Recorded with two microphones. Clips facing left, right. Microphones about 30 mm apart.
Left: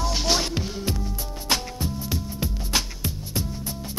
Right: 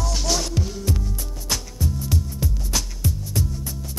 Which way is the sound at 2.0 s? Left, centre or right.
Left.